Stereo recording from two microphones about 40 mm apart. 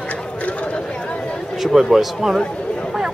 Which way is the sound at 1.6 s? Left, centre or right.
Centre.